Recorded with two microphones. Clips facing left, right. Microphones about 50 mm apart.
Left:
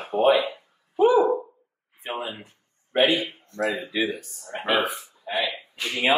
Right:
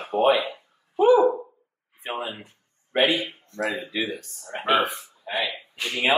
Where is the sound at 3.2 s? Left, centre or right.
Centre.